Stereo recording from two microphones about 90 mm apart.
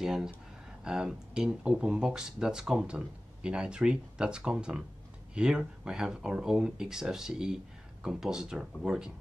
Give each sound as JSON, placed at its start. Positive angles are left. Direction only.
{"t": 0.0, "sound": "speech", "side_deg": -5}